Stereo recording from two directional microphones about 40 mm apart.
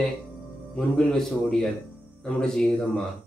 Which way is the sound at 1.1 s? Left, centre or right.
Centre.